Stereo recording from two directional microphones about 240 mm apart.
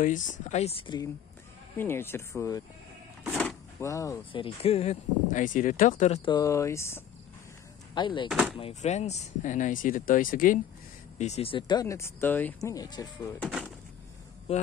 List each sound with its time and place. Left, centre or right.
0.0 s speech: left
8.3 s speech: centre
8.5 s speech: left
13.4 s speech: centre